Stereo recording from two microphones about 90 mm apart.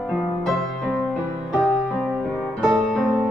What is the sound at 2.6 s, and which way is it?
Music, centre (ahead or behind).